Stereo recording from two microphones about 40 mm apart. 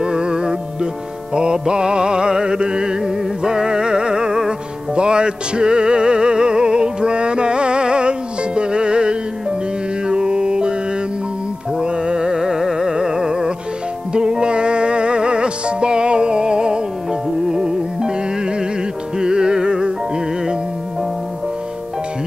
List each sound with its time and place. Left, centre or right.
0.0 s music: right
11.8 s music: right